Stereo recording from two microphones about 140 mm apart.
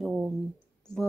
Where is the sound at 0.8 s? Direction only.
5° left (ahead or behind).